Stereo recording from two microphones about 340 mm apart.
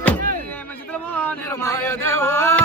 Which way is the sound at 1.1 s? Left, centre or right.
Centre.